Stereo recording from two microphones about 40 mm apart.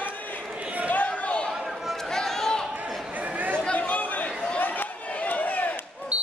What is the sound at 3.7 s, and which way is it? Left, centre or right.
Chatter, left.